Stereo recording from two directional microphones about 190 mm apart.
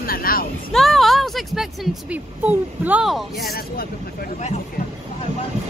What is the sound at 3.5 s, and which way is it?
Speech, 50° left (ahead or behind).